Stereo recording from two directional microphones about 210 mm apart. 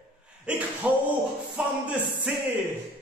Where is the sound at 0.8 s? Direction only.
5° right (ahead or behind).